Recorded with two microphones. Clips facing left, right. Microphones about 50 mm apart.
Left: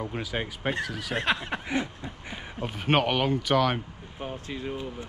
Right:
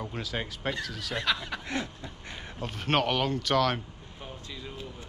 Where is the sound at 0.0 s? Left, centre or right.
Centre.